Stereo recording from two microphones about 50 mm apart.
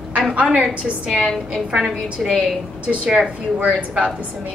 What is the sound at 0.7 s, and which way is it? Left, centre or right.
Speech, right.